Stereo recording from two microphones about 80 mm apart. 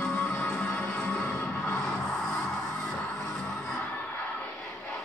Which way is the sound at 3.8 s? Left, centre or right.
Left.